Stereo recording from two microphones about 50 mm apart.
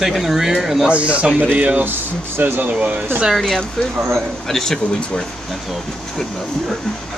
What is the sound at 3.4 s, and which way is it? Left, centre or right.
Speech, centre.